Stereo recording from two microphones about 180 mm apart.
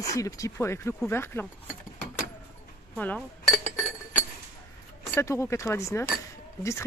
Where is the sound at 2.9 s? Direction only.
10° left (ahead or behind).